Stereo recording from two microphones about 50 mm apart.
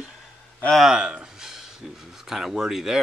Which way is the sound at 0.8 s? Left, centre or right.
Centre.